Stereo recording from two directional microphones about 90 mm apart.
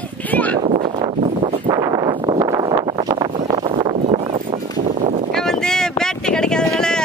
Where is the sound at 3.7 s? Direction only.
80° right.